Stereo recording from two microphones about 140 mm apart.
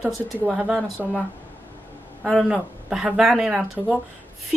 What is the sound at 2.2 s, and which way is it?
Speech, centre (ahead or behind).